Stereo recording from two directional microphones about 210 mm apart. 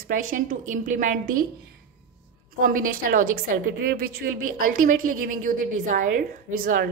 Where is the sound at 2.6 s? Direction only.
40° right (ahead or behind).